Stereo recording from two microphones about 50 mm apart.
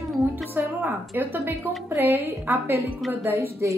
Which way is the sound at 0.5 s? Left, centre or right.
Right.